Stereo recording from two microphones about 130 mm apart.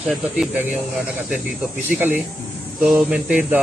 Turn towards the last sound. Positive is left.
turn(degrees=-10)  # may be behind; listen again after turning